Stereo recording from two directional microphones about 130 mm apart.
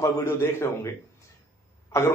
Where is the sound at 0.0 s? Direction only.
20° left (ahead or behind).